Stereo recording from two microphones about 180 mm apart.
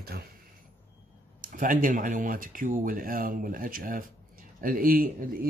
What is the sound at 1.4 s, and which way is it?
Speech, 50° right (ahead or behind).